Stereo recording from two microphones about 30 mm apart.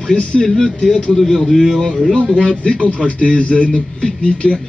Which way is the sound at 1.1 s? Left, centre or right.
Centre.